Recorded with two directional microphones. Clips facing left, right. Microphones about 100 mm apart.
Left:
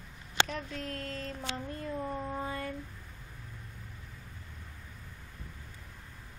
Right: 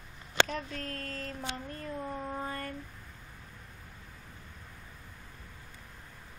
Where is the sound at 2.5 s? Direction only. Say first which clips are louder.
Left 1 dB; 10° left (ahead or behind).